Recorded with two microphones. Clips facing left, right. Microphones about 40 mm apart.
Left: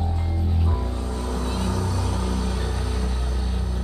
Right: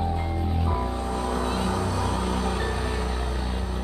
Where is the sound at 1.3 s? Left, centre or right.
Centre.